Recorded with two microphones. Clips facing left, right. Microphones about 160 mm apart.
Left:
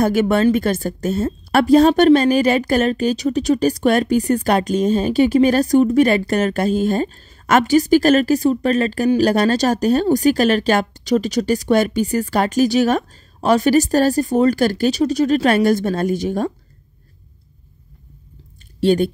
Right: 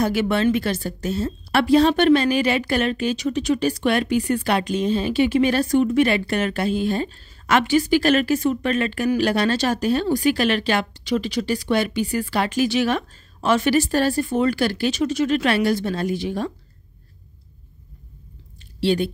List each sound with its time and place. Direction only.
0.0 s a woman's voice: 45° left (ahead or behind)
18.8 s speech: 45° left (ahead or behind)